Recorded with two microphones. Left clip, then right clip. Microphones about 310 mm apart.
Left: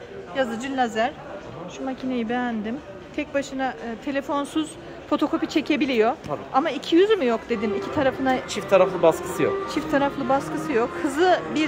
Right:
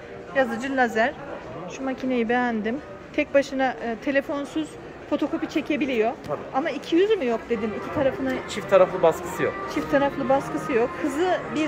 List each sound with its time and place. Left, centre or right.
0.4 s speech: centre
8.5 s speech: left
9.7 s speech: centre